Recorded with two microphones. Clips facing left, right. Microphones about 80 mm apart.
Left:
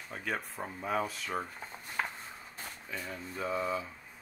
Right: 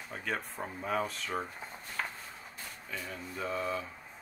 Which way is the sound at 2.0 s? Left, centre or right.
Centre.